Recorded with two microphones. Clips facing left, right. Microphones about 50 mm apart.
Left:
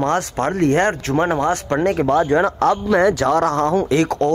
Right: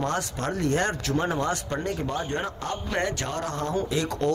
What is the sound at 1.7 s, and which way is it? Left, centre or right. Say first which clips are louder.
Speech: left 12 dB; left.